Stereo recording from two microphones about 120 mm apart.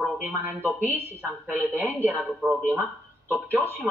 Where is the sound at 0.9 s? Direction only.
15° right (ahead or behind).